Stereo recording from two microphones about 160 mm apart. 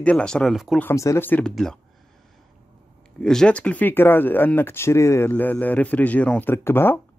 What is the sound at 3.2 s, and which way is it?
Speech, 5° left (ahead or behind).